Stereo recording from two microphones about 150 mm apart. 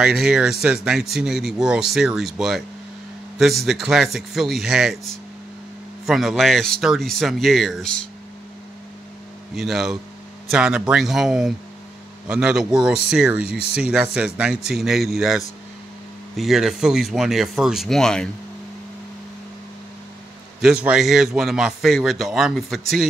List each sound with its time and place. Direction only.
0.0 s a man's voice: 5° right (ahead or behind)
9.6 s a man's voice: centre (ahead or behind)
20.6 s a man's voice: 5° right (ahead or behind)